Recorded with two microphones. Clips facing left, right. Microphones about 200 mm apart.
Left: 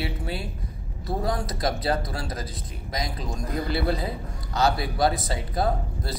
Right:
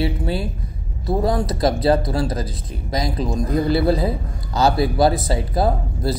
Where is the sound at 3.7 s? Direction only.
35° right (ahead or behind).